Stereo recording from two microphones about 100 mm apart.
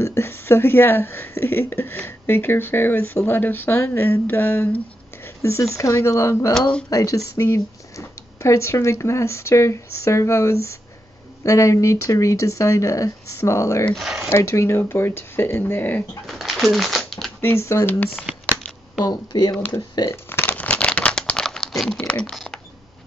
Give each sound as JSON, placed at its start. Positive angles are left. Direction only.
{"t": 0.0, "sound": "speech", "side_deg": 25}
{"t": 13.9, "sound": "speech", "side_deg": -5}
{"t": 14.3, "sound": "speech", "side_deg": 25}
{"t": 16.3, "sound": "shuffling cards", "side_deg": 0}
{"t": 17.4, "sound": "speech", "side_deg": 25}
{"t": 19.0, "sound": "speech", "side_deg": 45}
{"t": 20.1, "sound": "crumpling", "side_deg": 20}
{"t": 22.0, "sound": "speech", "side_deg": 10}